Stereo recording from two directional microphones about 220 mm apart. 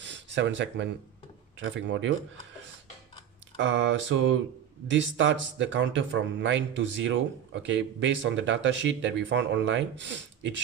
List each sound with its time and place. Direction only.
0.0 s a sound: 55° right (ahead or behind)
1.6 s speech: 60° right (ahead or behind)
3.5 s speech: 60° right (ahead or behind)